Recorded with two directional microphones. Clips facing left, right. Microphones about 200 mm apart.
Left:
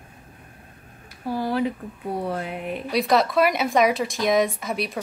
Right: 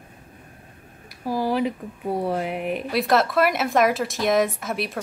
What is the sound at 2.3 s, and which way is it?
Speech, 15° right (ahead or behind).